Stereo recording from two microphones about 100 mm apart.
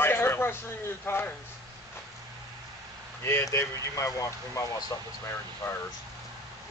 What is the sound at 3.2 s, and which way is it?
A man's voice, 25° left (ahead or behind).